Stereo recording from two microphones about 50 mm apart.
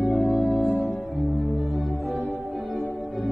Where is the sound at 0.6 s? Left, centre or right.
Left.